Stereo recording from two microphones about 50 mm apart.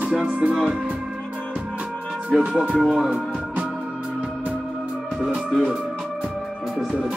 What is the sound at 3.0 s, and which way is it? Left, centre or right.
Speech, centre.